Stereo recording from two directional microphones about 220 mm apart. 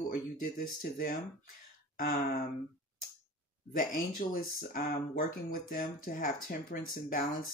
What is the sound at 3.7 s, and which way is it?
Speech, 35° left (ahead or behind).